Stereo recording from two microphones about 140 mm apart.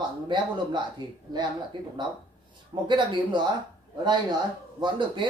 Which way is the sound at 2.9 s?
35° right (ahead or behind).